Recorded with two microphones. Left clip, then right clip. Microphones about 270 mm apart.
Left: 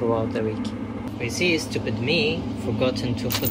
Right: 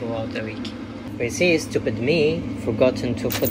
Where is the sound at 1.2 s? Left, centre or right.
Centre.